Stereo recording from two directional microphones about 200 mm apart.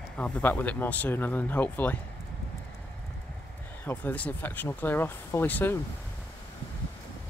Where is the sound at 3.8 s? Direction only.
10° left (ahead or behind).